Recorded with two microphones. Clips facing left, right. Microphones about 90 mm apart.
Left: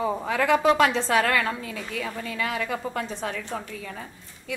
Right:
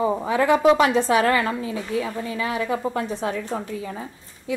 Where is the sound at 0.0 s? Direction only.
10° right (ahead or behind).